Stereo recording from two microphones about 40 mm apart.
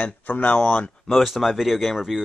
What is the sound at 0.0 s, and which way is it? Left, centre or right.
Speech, left.